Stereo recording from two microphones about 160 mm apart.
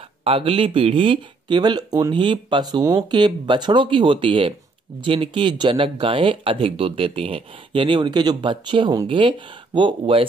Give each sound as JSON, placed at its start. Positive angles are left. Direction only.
{"t": 0.2, "sound": "speech", "side_deg": -35}